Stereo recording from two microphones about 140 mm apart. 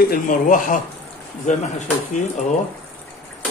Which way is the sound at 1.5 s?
60° left (ahead or behind).